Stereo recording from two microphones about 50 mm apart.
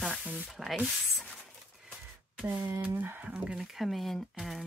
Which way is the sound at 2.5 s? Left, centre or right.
Right.